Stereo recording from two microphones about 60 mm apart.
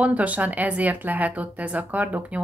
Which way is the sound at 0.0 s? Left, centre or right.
Right.